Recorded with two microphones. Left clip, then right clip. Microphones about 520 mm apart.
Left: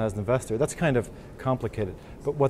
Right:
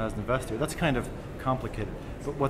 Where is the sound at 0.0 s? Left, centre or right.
Left.